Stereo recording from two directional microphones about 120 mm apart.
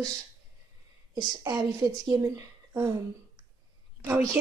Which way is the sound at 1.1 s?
30° right (ahead or behind).